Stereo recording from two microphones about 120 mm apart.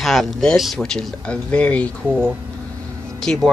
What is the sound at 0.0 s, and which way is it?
Speech, centre (ahead or behind).